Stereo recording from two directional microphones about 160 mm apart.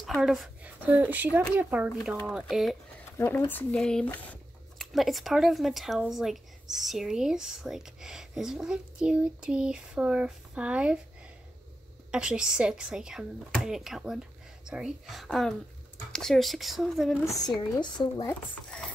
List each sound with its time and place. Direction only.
0.0 s speech: centre (ahead or behind)
3.2 s speech: 15° left (ahead or behind); by 11.0 s 5° right (ahead or behind)
12.1 s speech: 5° right (ahead or behind)
17.2 s speech: 20° left (ahead or behind)